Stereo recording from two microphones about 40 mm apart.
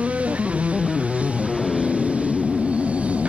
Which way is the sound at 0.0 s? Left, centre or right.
Right.